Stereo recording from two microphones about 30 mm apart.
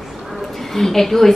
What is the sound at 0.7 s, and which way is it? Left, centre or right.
Speech, centre.